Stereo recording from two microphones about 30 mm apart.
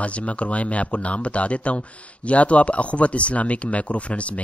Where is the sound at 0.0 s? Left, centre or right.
Left.